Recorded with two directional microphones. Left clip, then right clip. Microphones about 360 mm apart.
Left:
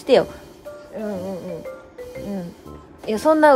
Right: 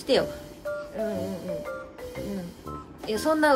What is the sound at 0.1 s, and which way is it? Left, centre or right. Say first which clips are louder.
Speech: left 8 dB; centre.